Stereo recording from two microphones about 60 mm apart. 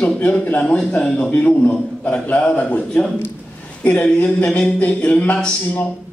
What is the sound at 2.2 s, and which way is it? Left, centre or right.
Speech, left.